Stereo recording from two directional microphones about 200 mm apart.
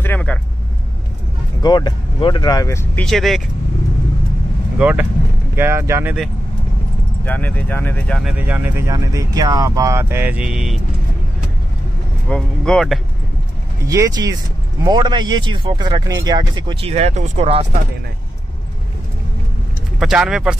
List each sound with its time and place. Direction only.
0.0 s vehicle: 10° left (ahead or behind)
1.6 s speech: 20° left (ahead or behind)
3.1 s speech: centre (ahead or behind)
4.7 s speech: 5° right (ahead or behind)
7.2 s speech: 10° left (ahead or behind)
12.3 s speech: 5° left (ahead or behind)
13.8 s speech: 15° right (ahead or behind); by 17.6 s 35° right (ahead or behind)
20.0 s speech: 5° right (ahead or behind)